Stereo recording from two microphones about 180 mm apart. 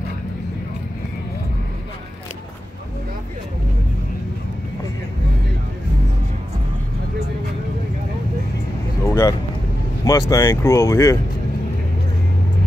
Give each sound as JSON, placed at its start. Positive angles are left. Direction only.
{"t": 9.0, "sound": "vehicle", "side_deg": 15}
{"t": 10.0, "sound": "speech", "side_deg": 20}